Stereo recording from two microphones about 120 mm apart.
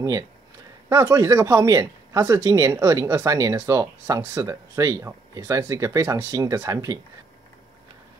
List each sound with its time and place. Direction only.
0.8 s speech: 25° right (ahead or behind)